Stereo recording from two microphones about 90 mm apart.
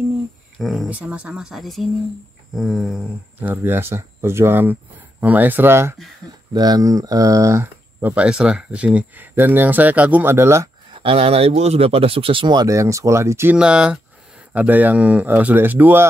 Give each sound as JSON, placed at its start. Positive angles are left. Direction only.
{"t": 0.6, "sound": "speech", "side_deg": 0}
{"t": 0.8, "sound": "speech", "side_deg": -15}
{"t": 2.5, "sound": "a sound", "side_deg": -5}
{"t": 3.3, "sound": "speech", "side_deg": -25}
{"t": 6.5, "sound": "speech", "side_deg": -45}
{"t": 8.0, "sound": "speech", "side_deg": -15}
{"t": 10.9, "sound": "speech", "side_deg": -85}
{"t": 12.6, "sound": "speech", "side_deg": -35}
{"t": 13.5, "sound": "speech", "side_deg": -10}